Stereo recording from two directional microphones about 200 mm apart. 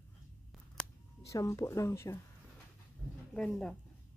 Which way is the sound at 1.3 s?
15° left (ahead or behind).